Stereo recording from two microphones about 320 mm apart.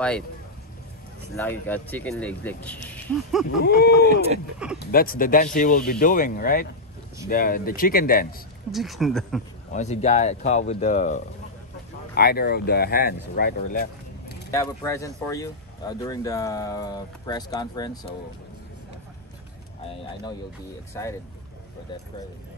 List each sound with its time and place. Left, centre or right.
1.3 s speech: centre
3.6 s speech: left
8.7 s speech: centre
9.7 s speech: left
14.5 s speech: centre
21.0 s speech: centre